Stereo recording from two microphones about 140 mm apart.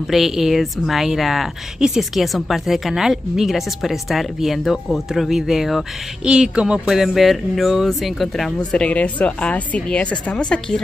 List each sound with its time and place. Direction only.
0.0 s a woman's voice: centre (ahead or behind)